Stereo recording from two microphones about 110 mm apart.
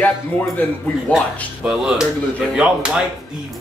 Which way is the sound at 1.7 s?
5° right (ahead or behind).